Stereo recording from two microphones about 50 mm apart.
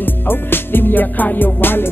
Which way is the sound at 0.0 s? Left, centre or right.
Left.